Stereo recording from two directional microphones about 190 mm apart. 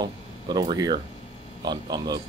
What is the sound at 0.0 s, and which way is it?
A man's voice, 20° right (ahead or behind).